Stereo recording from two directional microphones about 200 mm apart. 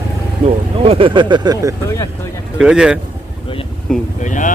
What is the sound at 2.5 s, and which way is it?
Speech, 5° right (ahead or behind).